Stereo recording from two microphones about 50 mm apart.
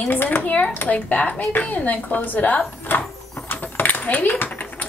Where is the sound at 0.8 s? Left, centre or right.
Left.